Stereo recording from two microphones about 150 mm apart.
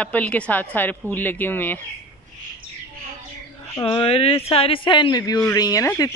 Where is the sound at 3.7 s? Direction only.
35° left (ahead or behind).